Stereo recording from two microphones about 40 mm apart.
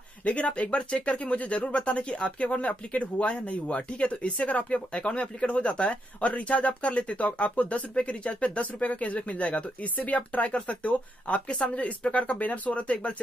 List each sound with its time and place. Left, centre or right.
0.2 s speech: left